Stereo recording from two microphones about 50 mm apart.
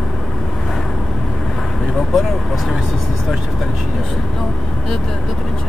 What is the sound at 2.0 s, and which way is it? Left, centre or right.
Speech, centre.